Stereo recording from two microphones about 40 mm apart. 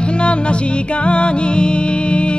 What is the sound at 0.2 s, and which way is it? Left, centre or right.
Music, left.